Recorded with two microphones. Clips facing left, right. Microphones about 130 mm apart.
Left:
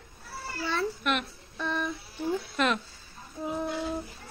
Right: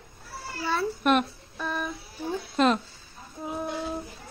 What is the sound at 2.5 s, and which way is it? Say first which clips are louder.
Speech: right 7 dB; 35° right (ahead or behind).